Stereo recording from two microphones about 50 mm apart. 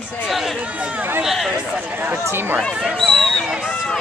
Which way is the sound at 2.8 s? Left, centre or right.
Centre.